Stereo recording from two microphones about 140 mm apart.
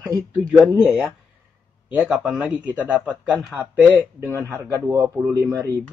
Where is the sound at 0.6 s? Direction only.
5° right (ahead or behind).